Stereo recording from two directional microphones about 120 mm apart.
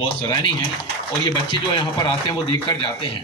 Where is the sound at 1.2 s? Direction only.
40° left (ahead or behind).